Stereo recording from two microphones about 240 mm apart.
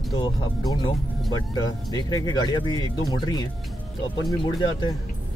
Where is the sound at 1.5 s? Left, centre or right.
Centre.